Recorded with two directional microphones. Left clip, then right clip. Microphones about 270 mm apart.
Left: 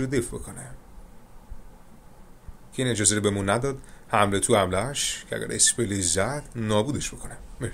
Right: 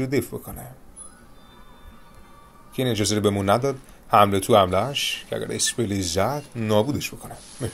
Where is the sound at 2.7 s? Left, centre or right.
Centre.